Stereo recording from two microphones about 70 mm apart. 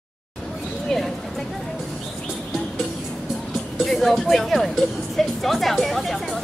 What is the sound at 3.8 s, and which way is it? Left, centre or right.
Speech, centre.